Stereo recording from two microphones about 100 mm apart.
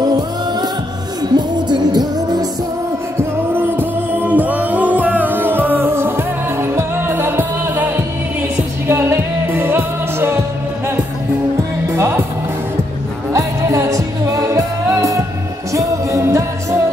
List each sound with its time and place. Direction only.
0.0 s music: 40° right (ahead or behind)
3.2 s music: 20° right (ahead or behind)
11.9 s music: 25° right (ahead or behind)
13.3 s music: 30° right (ahead or behind)